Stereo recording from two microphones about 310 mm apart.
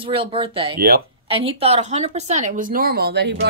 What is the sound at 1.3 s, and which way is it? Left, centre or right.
Speech, centre.